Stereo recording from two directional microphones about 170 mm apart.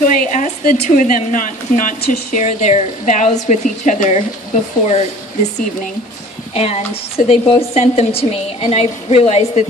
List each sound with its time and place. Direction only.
0.0 s a sound: 50° left (ahead or behind)
0.8 s a woman's voice: 50° left (ahead or behind)
6.5 s a woman's voice: 40° left (ahead or behind)